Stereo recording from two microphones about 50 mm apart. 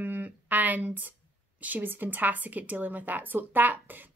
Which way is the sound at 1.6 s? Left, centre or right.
Right.